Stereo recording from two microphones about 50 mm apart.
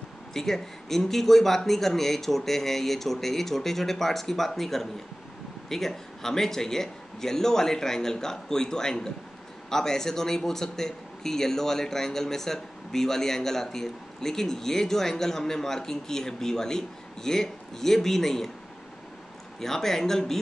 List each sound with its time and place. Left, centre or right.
0.3 s a man's voice: centre
19.6 s a man's voice: centre